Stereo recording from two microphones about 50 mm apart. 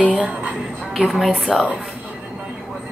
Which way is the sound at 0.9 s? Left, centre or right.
Centre.